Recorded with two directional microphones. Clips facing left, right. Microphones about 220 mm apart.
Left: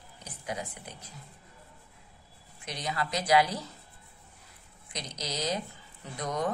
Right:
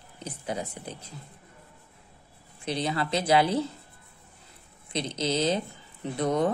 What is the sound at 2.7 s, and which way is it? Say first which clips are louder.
A woman's voice: right 6 dB; 30° right (ahead or behind).